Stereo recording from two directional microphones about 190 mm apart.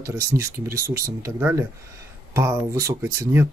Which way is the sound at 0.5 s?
50° right (ahead or behind).